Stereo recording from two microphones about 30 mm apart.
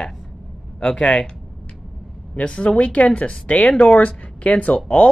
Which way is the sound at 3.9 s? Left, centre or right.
Left.